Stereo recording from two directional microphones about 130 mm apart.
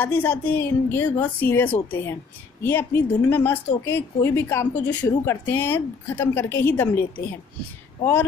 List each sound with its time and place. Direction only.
0.0 s a woman's voice: 15° left (ahead or behind)